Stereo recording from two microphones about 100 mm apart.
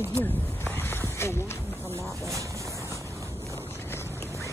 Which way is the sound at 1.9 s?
30° right (ahead or behind).